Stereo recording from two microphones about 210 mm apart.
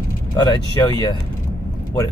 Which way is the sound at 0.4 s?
20° left (ahead or behind).